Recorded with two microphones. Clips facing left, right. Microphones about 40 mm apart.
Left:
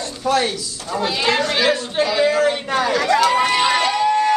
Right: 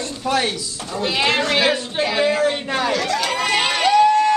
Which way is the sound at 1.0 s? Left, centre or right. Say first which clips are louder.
Even; right.